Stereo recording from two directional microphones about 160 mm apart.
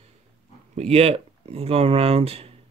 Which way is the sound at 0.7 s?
40° right (ahead or behind).